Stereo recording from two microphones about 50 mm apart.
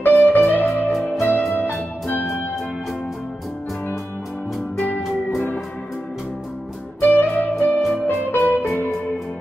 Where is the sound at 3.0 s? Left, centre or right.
Centre.